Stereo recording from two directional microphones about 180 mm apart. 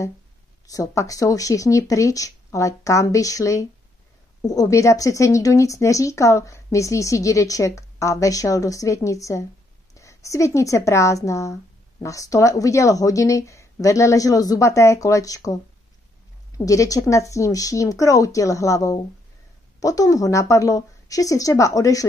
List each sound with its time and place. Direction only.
0.7 s a woman's voice: 20° left (ahead or behind)